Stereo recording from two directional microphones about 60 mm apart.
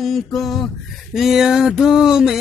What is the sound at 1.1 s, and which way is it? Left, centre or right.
Mantra, centre.